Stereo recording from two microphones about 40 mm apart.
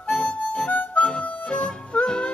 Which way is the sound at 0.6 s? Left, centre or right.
Left.